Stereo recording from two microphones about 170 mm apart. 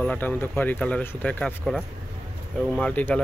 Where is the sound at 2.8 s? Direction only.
10° left (ahead or behind).